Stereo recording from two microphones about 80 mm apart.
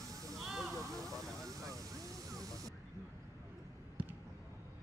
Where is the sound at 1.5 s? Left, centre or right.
Right.